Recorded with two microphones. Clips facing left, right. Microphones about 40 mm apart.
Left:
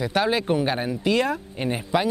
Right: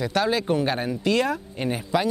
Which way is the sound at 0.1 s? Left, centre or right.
Centre.